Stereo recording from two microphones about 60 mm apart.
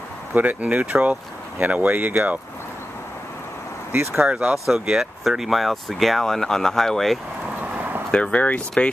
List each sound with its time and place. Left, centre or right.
0.3 s speech: right
3.9 s speech: right
4.2 s speech: centre
7.7 s a sound: right
8.1 s speech: left